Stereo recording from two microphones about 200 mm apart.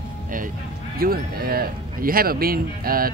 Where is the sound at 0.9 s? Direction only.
50° right (ahead or behind).